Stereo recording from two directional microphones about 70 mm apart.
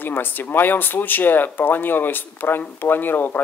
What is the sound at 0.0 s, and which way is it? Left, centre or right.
Speech, left.